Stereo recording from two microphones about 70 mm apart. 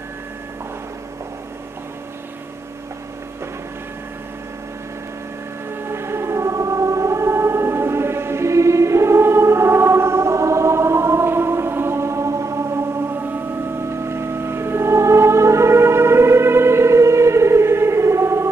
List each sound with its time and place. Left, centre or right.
5.9 s choir: right
14.0 s music: right